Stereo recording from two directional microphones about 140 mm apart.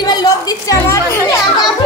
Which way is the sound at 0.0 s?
30° left (ahead or behind).